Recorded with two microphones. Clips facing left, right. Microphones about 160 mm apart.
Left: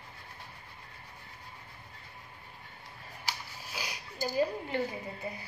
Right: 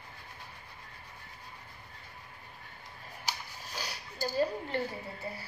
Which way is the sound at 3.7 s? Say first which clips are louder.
Even; 10° left (ahead or behind).